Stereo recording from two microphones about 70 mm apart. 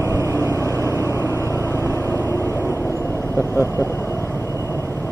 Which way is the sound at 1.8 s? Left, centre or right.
Left.